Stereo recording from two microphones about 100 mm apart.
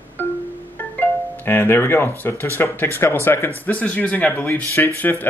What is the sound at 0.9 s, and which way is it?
Speech, 20° left (ahead or behind).